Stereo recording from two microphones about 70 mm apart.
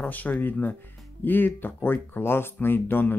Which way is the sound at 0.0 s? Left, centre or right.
Left.